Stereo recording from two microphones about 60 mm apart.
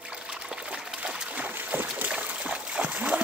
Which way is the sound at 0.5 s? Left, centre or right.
Centre.